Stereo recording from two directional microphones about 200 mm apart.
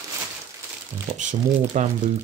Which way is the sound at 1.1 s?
35° right (ahead or behind).